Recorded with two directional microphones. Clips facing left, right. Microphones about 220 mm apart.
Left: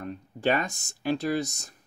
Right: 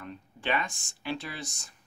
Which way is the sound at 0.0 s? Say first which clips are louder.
Left 9 dB; 45° left (ahead or behind).